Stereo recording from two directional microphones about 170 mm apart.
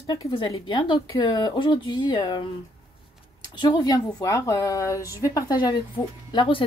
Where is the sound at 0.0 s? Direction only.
20° left (ahead or behind).